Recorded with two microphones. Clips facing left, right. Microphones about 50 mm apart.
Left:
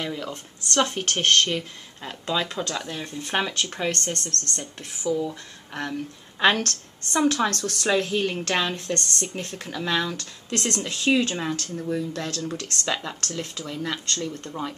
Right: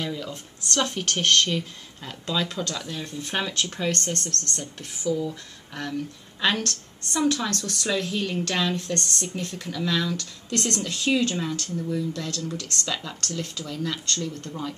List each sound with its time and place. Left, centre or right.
0.0 s speech: centre
5.2 s speech: centre
6.4 s a woman's voice: left
7.9 s speech: left
11.5 s a woman's voice: left
12.4 s speech: left